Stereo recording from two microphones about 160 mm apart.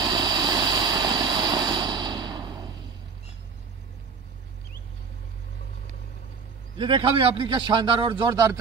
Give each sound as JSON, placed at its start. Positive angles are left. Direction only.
{"t": 0.0, "sound": "vehicle", "side_deg": -25}
{"t": 6.8, "sound": "a man's voice", "side_deg": -30}